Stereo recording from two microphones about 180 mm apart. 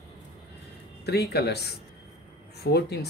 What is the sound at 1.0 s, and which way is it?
Speech, 65° left (ahead or behind).